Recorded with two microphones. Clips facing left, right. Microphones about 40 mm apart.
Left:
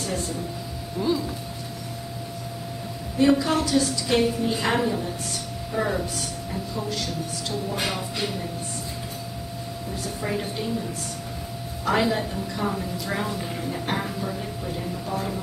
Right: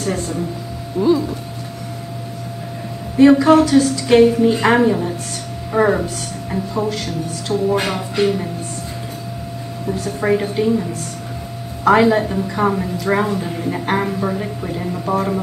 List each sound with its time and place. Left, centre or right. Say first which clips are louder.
1.0 s speech: right 9 dB; centre
3.2 s a woman's voice: right 10 dB; right
7.4 s a woman's voice: right 11 dB; right
9.9 s a woman's voice: right 11 dB; right
12.0 s a woman's voice: right 9 dB; right